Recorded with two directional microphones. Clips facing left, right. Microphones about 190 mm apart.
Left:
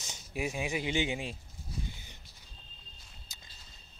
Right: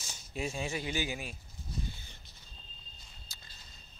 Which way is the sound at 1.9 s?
15° left (ahead or behind).